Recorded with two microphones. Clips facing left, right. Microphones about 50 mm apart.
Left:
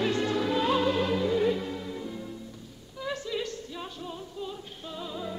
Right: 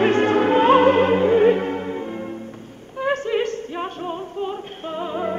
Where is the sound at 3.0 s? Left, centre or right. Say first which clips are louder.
Right 11 dB; right.